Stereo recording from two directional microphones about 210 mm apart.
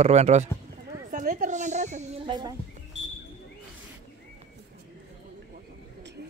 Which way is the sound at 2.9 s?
55° left (ahead or behind).